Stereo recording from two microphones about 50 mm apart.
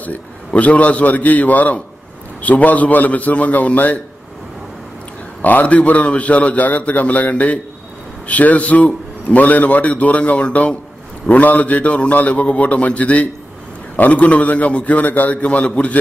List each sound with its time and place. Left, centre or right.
0.5 s a man's voice: left
5.4 s a man's voice: left